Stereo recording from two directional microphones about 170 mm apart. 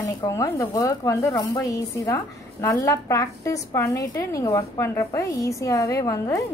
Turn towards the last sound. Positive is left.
turn(degrees=20)  # may be behind; listen again after turning